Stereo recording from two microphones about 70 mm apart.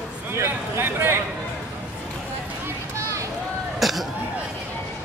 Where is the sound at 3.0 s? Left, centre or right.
Right.